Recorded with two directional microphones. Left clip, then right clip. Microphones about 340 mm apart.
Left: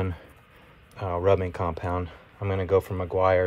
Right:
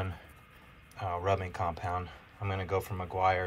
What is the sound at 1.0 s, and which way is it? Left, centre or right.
Speech, left.